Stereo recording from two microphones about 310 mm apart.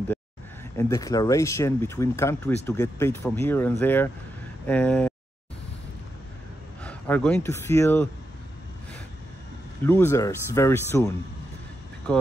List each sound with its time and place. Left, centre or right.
0.7 s speech: centre
6.8 s speech: centre
9.8 s speech: centre